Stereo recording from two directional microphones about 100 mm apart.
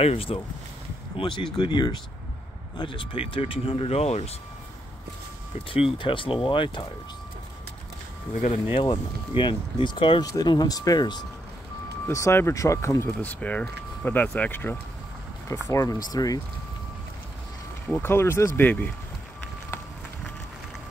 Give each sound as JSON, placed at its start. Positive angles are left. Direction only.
{"t": 0.0, "sound": "speech", "side_deg": 75}
{"t": 1.1, "sound": "speech", "side_deg": 55}
{"t": 5.9, "sound": "speech", "side_deg": 60}
{"t": 8.7, "sound": "speech", "side_deg": 50}
{"t": 10.2, "sound": "speech", "side_deg": 40}
{"t": 12.1, "sound": "speech", "side_deg": 30}
{"t": 13.2, "sound": "speech", "side_deg": 15}
{"t": 15.7, "sound": "speech", "side_deg": 35}
{"t": 17.8, "sound": "speech", "side_deg": 20}